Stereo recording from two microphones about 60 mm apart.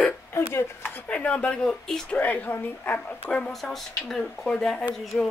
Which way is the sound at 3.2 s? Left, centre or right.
Centre.